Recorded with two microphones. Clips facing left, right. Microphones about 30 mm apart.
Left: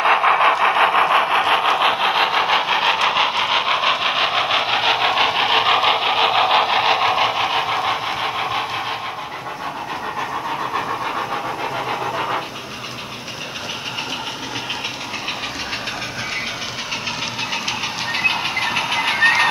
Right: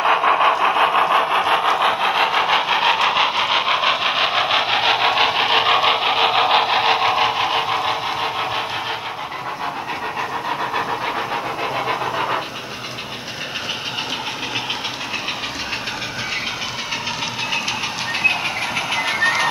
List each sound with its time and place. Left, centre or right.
0.0 s engine: left
0.9 s engine: left
1.5 s engine: centre
11.9 s vehicle: centre
17.5 s train: centre